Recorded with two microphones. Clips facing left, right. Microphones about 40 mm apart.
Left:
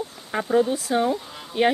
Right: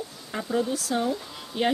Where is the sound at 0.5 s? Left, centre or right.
Left.